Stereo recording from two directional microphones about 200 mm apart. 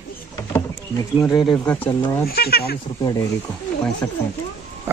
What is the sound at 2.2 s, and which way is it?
Speech, 50° left (ahead or behind).